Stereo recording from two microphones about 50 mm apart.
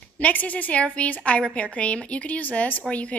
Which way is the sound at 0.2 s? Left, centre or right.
Left.